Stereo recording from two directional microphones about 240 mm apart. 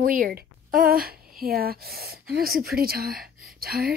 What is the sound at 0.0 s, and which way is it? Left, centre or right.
A woman's voice, right.